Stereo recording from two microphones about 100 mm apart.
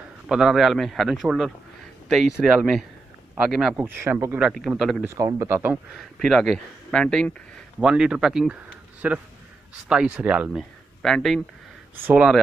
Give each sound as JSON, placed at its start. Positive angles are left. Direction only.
{"t": 0.3, "sound": "speech", "side_deg": -5}
{"t": 3.7, "sound": "speech", "side_deg": -20}
{"t": 4.6, "sound": "speech", "side_deg": 0}
{"t": 5.0, "sound": "speech", "side_deg": -35}
{"t": 5.9, "sound": "speech", "side_deg": 0}
{"t": 7.8, "sound": "speech", "side_deg": -10}
{"t": 11.0, "sound": "speech", "side_deg": 5}